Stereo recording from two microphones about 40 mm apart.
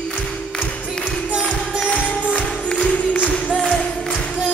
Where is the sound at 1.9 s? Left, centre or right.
Left.